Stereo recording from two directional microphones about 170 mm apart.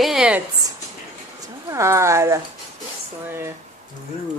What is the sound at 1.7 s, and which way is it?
Speech, 15° right (ahead or behind).